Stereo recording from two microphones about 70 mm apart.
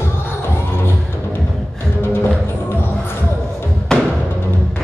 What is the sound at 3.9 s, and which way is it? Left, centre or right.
Music, centre.